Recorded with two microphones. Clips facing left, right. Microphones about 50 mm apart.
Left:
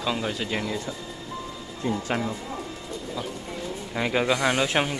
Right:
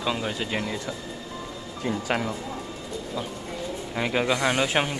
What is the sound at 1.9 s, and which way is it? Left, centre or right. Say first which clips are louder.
Speech: even; centre.